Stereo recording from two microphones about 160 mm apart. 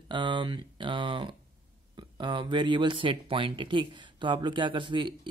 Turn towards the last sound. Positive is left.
turn(degrees=-30)  # may be behind; listen again after turning